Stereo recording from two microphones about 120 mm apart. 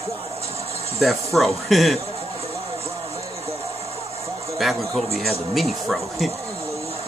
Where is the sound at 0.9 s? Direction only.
Centre (ahead or behind).